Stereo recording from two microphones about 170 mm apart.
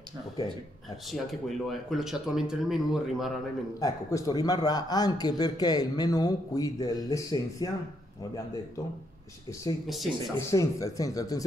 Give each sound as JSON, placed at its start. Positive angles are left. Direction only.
{"t": 1.0, "sound": "speech", "side_deg": 0}
{"t": 3.8, "sound": "a man's voice", "side_deg": 20}
{"t": 9.5, "sound": "speech", "side_deg": 15}
{"t": 9.8, "sound": "speech", "side_deg": 0}
{"t": 10.5, "sound": "a man's voice", "side_deg": 20}